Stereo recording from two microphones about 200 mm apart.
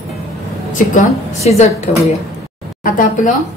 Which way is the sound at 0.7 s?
35° left (ahead or behind).